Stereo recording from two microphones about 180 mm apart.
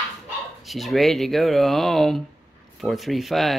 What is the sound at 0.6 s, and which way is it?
Speech, centre (ahead or behind).